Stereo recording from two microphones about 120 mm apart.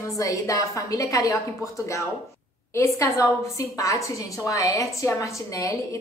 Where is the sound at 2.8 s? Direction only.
25° left (ahead or behind).